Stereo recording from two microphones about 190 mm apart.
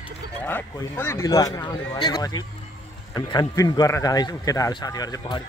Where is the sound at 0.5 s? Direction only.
10° left (ahead or behind).